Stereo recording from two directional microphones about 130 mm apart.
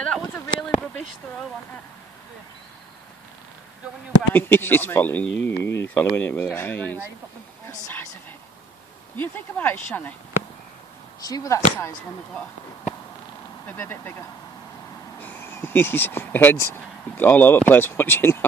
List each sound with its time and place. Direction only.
0.0 s a sound: 5° left (ahead or behind)
4.3 s speech: 15° left (ahead or behind)
5.6 s speech: 15° left (ahead or behind)
7.6 s a sound: 20° left (ahead or behind)
9.1 s speech: 15° left (ahead or behind)
11.1 s speech: 30° left (ahead or behind)
13.7 s speech: 15° left (ahead or behind)
15.1 s speech: 15° left (ahead or behind)